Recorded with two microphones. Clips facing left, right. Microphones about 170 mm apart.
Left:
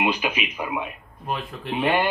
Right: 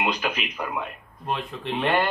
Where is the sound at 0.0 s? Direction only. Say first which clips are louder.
Left 2 dB; 10° left (ahead or behind).